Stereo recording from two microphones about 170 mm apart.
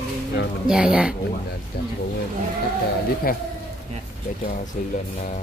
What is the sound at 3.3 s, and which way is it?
Speech, 60° left (ahead or behind).